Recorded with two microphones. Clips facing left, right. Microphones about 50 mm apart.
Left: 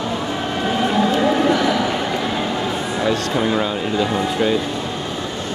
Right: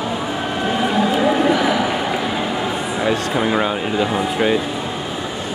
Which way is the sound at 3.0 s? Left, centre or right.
Centre.